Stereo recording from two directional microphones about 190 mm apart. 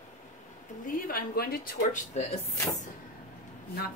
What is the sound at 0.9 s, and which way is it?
Speech, 50° left (ahead or behind).